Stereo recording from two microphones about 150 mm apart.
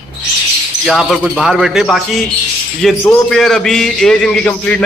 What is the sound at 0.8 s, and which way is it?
A man's voice, centre (ahead or behind).